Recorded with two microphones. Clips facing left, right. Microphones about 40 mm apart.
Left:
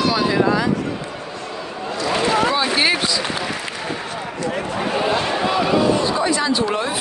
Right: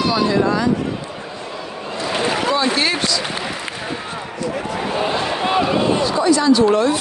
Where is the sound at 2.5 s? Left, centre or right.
Centre.